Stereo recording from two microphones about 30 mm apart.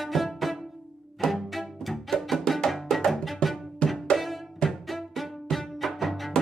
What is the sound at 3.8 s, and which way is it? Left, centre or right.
Music, left.